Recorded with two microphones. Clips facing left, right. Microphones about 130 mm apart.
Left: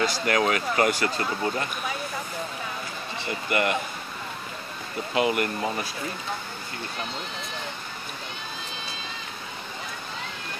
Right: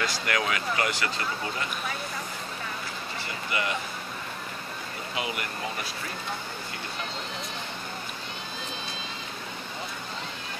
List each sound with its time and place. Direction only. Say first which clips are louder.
0.0 s speech: left 5 dB; 35° left (ahead or behind)
3.4 s speech: left 6 dB; 55° left (ahead or behind)
5.1 s speech: left 10 dB; 55° left (ahead or behind)